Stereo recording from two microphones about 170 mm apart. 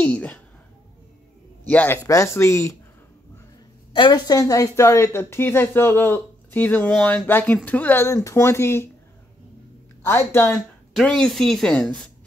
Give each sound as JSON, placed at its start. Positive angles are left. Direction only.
{"t": 0.0, "sound": "speech", "side_deg": 10}
{"t": 1.7, "sound": "speech", "side_deg": 10}
{"t": 3.9, "sound": "speech", "side_deg": 25}
{"t": 10.0, "sound": "speech", "side_deg": 15}
{"t": 10.9, "sound": "a woman's voice", "side_deg": 0}